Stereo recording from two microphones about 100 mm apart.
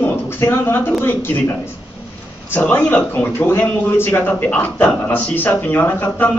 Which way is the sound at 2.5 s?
20° left (ahead or behind).